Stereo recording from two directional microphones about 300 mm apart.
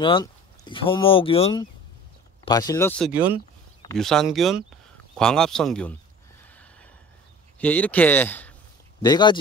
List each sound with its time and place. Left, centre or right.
0.0 s speech: centre
6.5 s a sound: centre
7.5 s speech: centre